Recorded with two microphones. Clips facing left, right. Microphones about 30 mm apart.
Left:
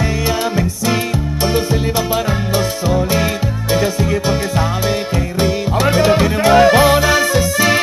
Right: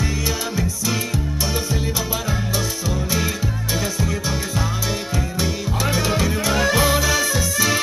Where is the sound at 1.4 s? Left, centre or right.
Left.